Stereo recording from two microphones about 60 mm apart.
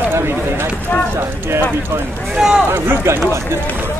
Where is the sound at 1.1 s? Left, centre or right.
Right.